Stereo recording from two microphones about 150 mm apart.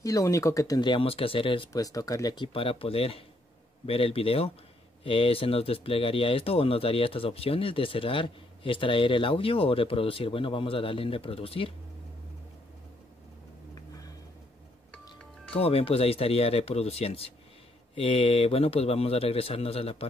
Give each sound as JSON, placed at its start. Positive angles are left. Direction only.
{"t": 0.0, "sound": "speech", "side_deg": 20}
{"t": 1.7, "sound": "speech", "side_deg": 25}
{"t": 15.5, "sound": "speech", "side_deg": 40}